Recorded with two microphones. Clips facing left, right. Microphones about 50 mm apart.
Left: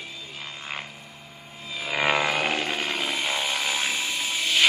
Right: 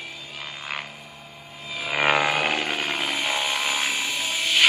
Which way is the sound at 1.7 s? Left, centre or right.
Right.